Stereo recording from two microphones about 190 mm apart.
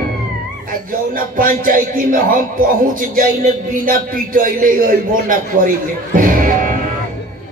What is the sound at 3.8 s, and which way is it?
Music, 45° right (ahead or behind).